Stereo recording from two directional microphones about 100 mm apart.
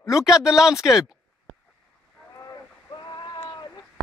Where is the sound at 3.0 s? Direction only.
45° left (ahead or behind).